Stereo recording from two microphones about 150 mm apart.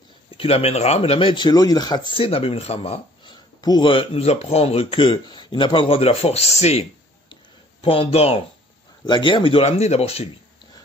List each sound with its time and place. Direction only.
0.4 s speech: 40° left (ahead or behind)
3.6 s speech: 30° left (ahead or behind)